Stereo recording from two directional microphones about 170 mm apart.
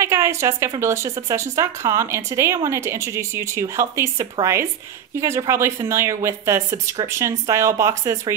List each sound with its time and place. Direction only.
0.0 s speech: 15° right (ahead or behind)